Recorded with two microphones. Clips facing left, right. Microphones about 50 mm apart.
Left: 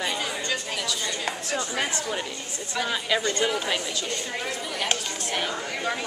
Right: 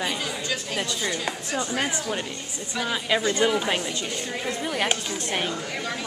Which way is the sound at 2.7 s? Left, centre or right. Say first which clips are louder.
Right 1 dB; centre.